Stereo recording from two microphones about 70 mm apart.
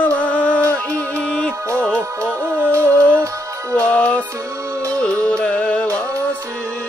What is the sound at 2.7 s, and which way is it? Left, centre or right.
Music, right.